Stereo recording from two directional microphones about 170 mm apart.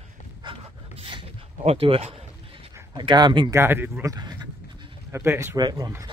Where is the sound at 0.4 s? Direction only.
30° right (ahead or behind).